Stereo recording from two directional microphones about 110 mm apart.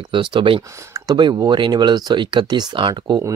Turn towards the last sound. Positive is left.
turn(degrees=-45)  # may be behind; listen again after turning